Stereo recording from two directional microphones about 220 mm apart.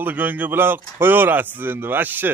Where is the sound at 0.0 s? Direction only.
10° right (ahead or behind).